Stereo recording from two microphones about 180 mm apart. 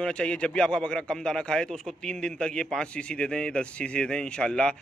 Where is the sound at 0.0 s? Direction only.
5° left (ahead or behind).